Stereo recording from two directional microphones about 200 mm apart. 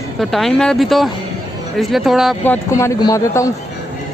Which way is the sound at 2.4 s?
10° left (ahead or behind).